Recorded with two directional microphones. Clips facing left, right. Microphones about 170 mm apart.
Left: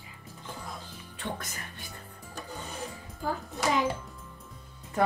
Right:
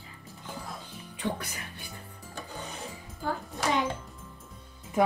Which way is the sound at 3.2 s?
Centre (ahead or behind).